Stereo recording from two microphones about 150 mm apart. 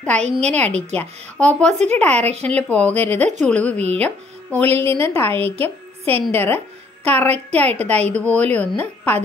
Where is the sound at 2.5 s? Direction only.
10° left (ahead or behind).